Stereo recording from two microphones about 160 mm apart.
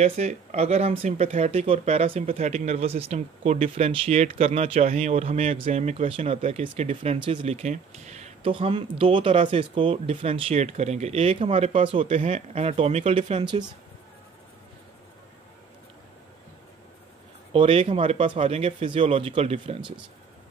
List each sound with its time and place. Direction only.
0.0 s speech: 45° right (ahead or behind); by 13.7 s 30° right (ahead or behind)
17.5 s speech: 35° right (ahead or behind)